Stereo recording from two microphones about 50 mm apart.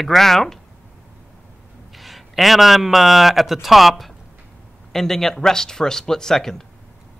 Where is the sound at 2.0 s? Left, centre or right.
Centre.